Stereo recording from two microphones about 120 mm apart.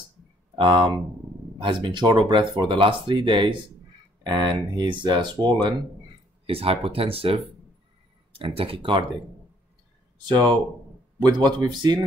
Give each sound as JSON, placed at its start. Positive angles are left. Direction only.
{"t": 0.6, "sound": "speech", "side_deg": -40}
{"t": 6.4, "sound": "speech", "side_deg": -55}
{"t": 10.2, "sound": "speech", "side_deg": -35}